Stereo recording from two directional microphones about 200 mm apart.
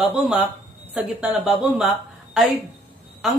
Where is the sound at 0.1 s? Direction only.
5° right (ahead or behind).